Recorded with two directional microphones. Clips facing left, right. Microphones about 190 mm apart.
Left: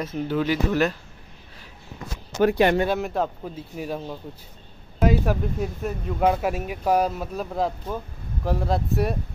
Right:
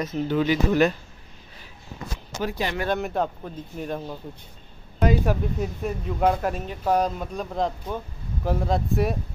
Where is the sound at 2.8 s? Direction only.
Centre (ahead or behind).